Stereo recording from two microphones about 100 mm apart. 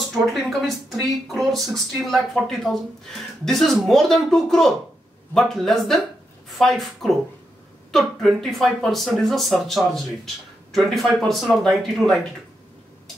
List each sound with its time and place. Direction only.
0.3 s speech: centre (ahead or behind)